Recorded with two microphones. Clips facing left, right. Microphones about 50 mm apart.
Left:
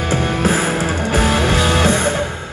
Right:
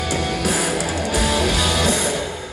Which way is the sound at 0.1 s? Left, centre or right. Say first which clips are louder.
Left 6 dB; left.